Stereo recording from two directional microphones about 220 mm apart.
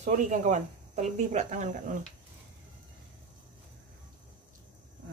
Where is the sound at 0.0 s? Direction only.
35° right (ahead or behind).